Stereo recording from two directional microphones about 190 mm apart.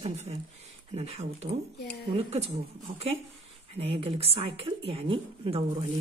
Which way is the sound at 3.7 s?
30° right (ahead or behind).